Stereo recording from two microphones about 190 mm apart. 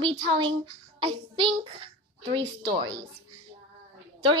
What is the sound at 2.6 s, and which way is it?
Speech, 20° right (ahead or behind).